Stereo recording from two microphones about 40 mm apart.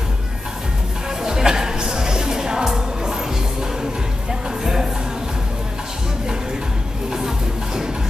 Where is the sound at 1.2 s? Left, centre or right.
Centre.